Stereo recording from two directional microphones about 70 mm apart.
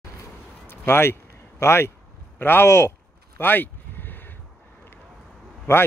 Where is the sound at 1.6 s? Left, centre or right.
Left.